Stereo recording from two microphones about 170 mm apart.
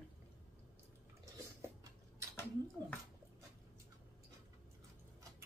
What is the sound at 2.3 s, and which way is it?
Speech, 10° left (ahead or behind).